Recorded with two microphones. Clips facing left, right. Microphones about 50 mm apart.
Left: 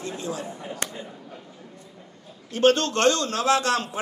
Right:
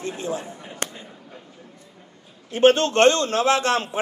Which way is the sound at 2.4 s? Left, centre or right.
Right.